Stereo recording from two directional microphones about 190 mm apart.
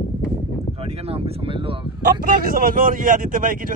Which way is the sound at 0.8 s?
30° right (ahead or behind).